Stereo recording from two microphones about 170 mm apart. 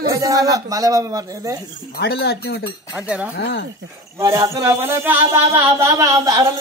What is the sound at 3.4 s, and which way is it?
Speech, 70° left (ahead or behind).